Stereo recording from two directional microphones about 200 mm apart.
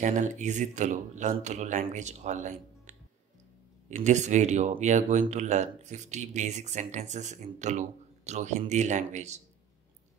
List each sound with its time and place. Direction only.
0.0 s speech: 40° right (ahead or behind)